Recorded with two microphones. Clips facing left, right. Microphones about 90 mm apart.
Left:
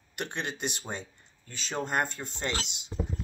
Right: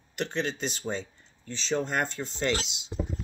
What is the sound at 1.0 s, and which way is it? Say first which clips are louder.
Speech: right 5 dB; 45° left (ahead or behind).